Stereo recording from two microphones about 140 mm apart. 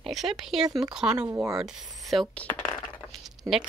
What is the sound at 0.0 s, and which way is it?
Speech, centre (ahead or behind).